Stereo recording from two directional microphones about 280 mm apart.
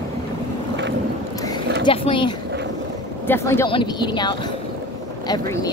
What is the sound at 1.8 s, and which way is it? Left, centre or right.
Speech, centre.